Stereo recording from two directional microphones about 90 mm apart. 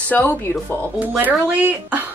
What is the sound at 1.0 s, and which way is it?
Speech, 20° right (ahead or behind).